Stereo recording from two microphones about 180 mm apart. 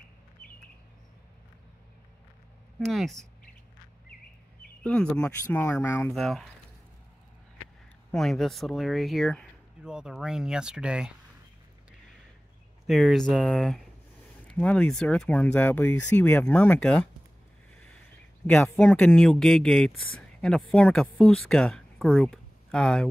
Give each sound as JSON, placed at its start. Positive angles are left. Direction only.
{"t": 2.8, "sound": "speech", "side_deg": 0}
{"t": 4.8, "sound": "speech", "side_deg": 5}
{"t": 6.1, "sound": "speech", "side_deg": 0}
{"t": 8.1, "sound": "speech", "side_deg": 0}
{"t": 12.8, "sound": "speech", "side_deg": 0}
{"t": 17.7, "sound": "a sound", "side_deg": 5}
{"t": 18.5, "sound": "speech", "side_deg": 10}